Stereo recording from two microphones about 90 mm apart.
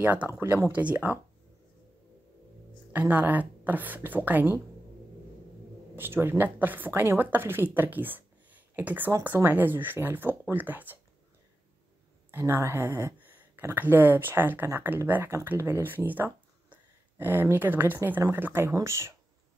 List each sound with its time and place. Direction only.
0.0 s speech: 20° right (ahead or behind)
0.7 s speech: 15° right (ahead or behind)
2.9 s speech: 15° right (ahead or behind)
5.9 s speech: 25° right (ahead or behind)
12.3 s speech: 25° right (ahead or behind)